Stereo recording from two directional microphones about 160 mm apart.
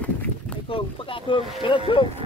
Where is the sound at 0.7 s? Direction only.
35° left (ahead or behind).